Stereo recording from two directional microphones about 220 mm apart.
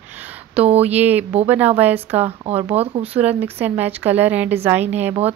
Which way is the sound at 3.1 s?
10° right (ahead or behind).